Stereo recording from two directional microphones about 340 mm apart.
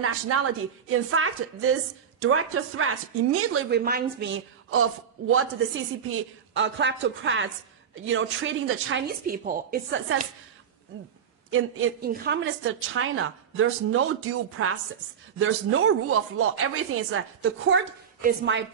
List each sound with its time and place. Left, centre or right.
0.0 s speech: right
3.8 s speech: right
6.0 s speech: right
9.2 s speech: right
11.5 s speech: right